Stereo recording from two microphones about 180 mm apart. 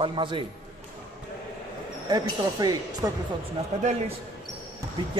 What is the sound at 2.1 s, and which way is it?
Speech, 20° right (ahead or behind).